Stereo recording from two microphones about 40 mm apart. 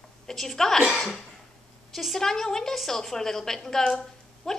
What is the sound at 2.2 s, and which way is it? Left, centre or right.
A woman's voice, centre.